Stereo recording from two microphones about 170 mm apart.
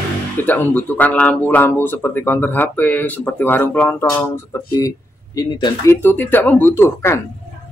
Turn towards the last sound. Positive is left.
turn(degrees=15)  # may be behind; listen again after turning